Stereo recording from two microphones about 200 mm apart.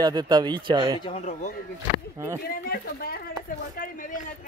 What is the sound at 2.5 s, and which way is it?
Speech, 50° left (ahead or behind).